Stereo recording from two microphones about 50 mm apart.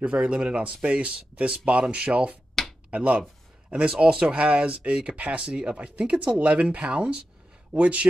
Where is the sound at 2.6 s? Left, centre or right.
Centre.